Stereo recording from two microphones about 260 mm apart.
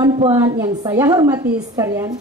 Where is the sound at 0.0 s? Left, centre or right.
Right.